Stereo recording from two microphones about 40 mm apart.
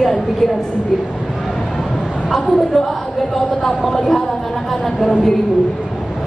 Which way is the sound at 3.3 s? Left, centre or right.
Centre.